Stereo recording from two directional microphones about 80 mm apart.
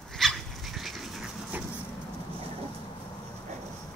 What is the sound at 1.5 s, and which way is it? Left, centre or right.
Vehicle, right.